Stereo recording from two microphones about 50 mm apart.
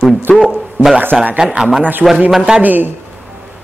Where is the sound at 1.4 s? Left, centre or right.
Centre.